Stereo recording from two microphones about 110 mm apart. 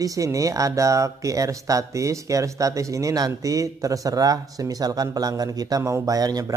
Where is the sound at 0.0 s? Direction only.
30° right (ahead or behind).